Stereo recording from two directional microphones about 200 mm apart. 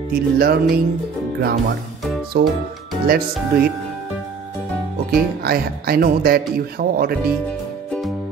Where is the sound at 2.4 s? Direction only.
55° right (ahead or behind).